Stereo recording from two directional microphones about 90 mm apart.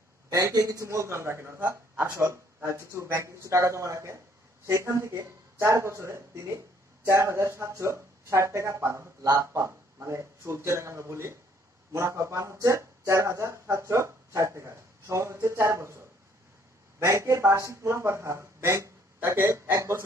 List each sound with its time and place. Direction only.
0.3 s a man's voice: 40° right (ahead or behind)